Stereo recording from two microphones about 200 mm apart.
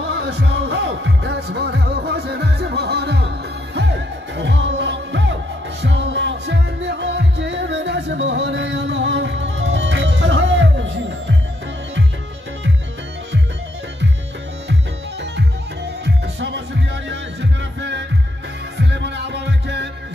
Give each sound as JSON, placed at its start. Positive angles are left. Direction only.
{"t": 0.1, "sound": "music", "side_deg": -60}
{"t": 16.3, "sound": "music", "side_deg": -60}